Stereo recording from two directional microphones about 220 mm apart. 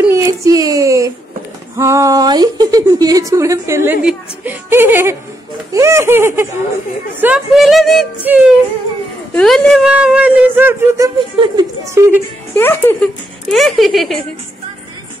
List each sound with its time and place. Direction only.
0.0 s child singing: 15° right (ahead or behind)
1.8 s a woman's voice: 15° right (ahead or behind)
11.1 s a woman's voice: 25° right (ahead or behind)
12.5 s speech: 10° left (ahead or behind)